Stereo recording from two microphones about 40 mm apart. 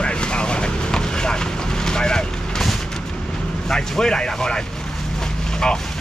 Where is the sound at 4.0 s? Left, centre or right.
Centre.